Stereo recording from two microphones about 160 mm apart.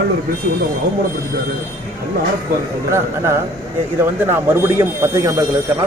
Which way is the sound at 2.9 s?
15° right (ahead or behind).